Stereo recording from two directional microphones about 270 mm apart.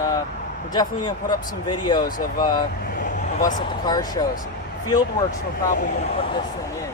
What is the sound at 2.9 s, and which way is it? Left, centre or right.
Vehicle, left.